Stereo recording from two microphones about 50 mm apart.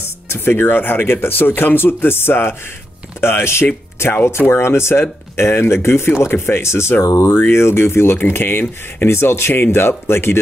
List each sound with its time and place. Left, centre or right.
0.0 s speech: left
6.2 s speech: left